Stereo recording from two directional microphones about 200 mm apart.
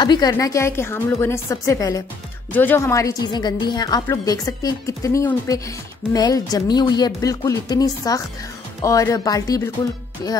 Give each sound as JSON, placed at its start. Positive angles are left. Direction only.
{"t": 0.0, "sound": "a woman's voice", "side_deg": 20}